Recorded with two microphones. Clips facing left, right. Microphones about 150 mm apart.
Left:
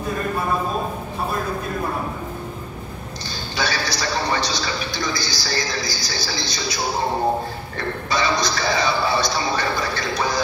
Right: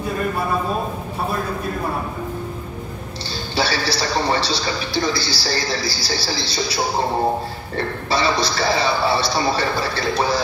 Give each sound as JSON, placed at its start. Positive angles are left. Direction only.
{"t": 3.3, "sound": "a man's voice", "side_deg": -30}